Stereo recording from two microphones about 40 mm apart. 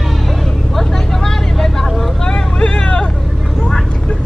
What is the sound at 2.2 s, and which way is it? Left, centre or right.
Vehicle, left.